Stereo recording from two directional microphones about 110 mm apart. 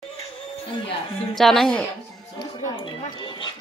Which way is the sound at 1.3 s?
Centre (ahead or behind).